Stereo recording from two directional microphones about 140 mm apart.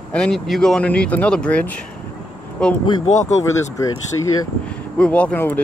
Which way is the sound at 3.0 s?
60° left (ahead or behind).